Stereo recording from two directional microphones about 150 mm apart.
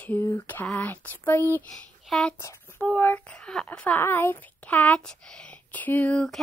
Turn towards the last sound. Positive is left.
turn(degrees=5)  # may be behind; listen again after turning